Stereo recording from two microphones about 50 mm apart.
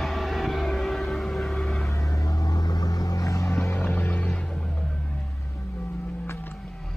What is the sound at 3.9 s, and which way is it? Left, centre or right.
Vehicle, left.